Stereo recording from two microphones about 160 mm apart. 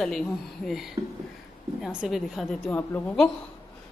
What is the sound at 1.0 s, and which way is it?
Speech, 25° right (ahead or behind).